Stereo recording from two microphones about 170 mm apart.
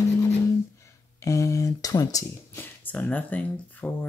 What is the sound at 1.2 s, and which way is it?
Speech, 20° left (ahead or behind).